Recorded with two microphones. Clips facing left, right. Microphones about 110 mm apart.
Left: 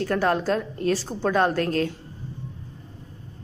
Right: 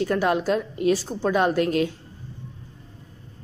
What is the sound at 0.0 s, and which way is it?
Speech, 10° right (ahead or behind).